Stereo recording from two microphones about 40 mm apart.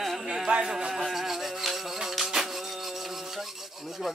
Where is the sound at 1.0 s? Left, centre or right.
Centre.